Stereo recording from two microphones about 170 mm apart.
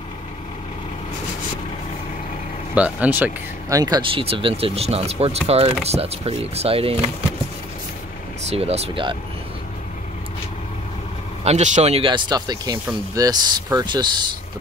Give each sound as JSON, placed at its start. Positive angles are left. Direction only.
{"t": 2.7, "sound": "speech", "side_deg": -10}
{"t": 4.2, "sound": "speech", "side_deg": -35}
{"t": 8.5, "sound": "speech", "side_deg": -40}
{"t": 11.4, "sound": "speech", "side_deg": -40}